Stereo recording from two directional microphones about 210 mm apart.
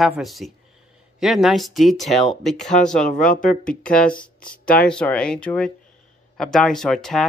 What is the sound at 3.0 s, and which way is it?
Speech, 40° left (ahead or behind).